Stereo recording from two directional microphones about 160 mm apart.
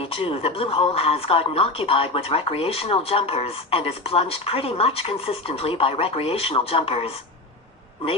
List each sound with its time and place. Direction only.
0.0 s a woman's voice: 35° left (ahead or behind)